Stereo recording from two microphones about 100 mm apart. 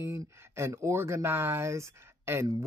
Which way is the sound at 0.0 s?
25° right (ahead or behind).